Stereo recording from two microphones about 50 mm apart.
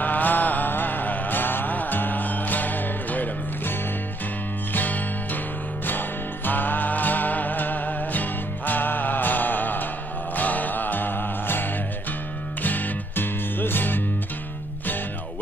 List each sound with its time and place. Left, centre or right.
0.0 s music: left
4.7 s music: left